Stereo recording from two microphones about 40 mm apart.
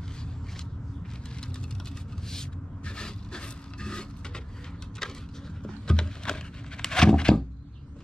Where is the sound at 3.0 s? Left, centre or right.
Centre.